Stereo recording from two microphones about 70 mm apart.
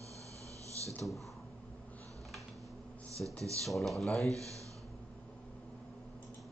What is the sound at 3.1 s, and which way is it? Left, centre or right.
Speech, right.